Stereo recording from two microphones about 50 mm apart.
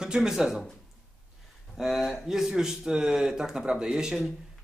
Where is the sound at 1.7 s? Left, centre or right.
Centre.